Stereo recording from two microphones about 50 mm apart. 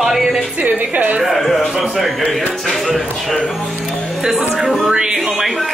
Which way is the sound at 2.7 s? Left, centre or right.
Centre.